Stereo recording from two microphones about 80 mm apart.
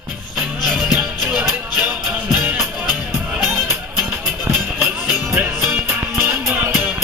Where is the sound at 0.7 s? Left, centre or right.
Centre.